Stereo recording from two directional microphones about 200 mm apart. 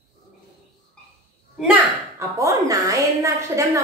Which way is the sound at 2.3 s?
15° right (ahead or behind).